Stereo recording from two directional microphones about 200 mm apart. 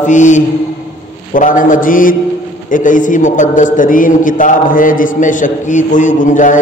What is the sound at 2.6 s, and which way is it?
A man's voice, 40° left (ahead or behind).